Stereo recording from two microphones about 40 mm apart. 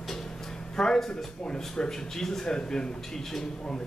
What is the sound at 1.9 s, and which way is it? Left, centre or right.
A man's voice, centre.